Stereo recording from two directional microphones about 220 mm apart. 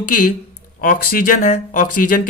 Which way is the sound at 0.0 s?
40° left (ahead or behind).